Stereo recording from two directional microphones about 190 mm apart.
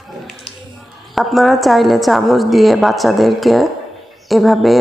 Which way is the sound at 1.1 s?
Centre (ahead or behind).